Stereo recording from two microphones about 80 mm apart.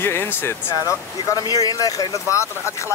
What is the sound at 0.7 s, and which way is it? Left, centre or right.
Speech, left.